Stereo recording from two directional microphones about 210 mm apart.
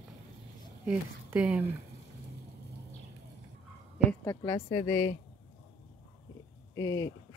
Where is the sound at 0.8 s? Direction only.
5° right (ahead or behind).